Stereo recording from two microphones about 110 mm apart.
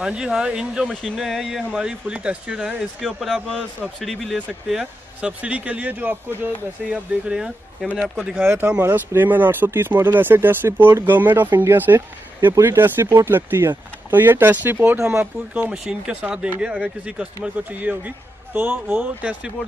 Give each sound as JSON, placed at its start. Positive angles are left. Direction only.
{"t": 0.0, "sound": "a man's voice", "side_deg": -5}
{"t": 15.7, "sound": "a man's voice", "side_deg": -10}